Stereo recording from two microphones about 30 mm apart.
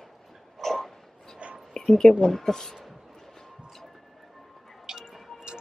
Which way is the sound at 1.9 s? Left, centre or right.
Centre.